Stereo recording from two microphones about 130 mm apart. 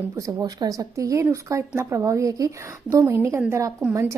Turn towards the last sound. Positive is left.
turn(degrees=-20)  # may be behind; listen again after turning